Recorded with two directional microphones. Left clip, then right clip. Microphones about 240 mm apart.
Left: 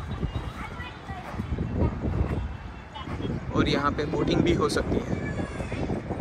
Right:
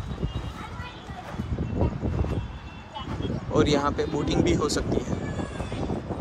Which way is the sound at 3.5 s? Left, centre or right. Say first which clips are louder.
Right 3 dB; centre.